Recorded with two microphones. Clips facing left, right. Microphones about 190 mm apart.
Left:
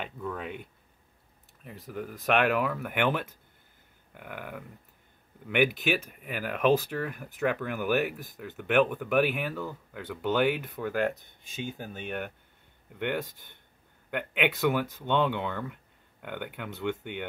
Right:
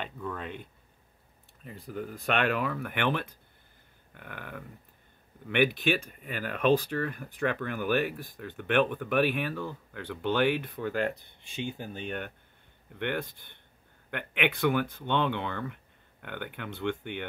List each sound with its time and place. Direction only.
0.0 s speech: 5° left (ahead or behind)
14.1 s speech: 5° left (ahead or behind)